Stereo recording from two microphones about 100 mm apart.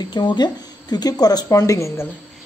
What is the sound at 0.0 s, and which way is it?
Speech, 45° left (ahead or behind).